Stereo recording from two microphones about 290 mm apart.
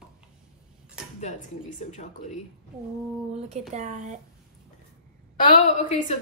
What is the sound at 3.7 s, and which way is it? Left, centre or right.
Speech, right.